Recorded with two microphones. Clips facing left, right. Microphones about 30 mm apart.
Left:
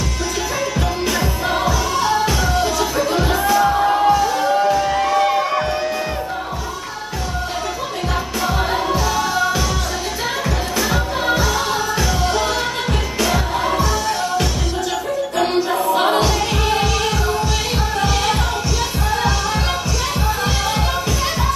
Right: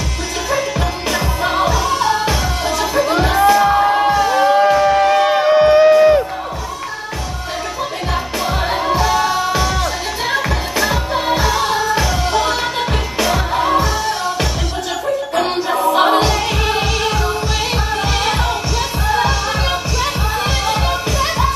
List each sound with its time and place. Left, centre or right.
0.7 s music: centre
8.5 s music: centre
15.3 s music: centre